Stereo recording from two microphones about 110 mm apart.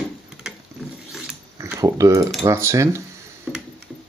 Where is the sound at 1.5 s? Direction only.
30° right (ahead or behind).